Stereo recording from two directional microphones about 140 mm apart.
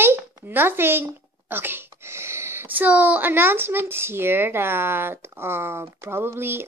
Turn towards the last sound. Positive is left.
turn(degrees=-15)  # may be behind; listen again after turning